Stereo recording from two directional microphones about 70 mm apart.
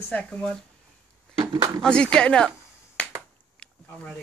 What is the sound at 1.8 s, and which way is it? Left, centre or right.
Speech, centre.